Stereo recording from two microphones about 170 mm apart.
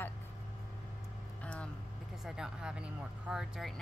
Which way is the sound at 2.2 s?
5° right (ahead or behind).